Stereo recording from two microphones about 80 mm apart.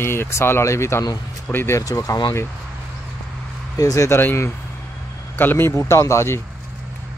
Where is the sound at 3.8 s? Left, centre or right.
Left.